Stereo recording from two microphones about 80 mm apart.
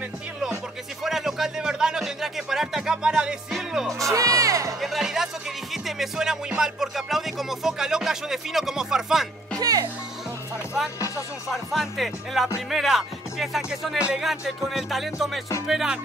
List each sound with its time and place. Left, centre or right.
1.0 s music: centre
3.5 s music: centre
4.0 s music: right
4.7 s music: centre
9.6 s music: right
11.5 s music: centre